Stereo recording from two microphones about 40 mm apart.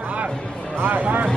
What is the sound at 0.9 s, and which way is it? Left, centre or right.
Music, right.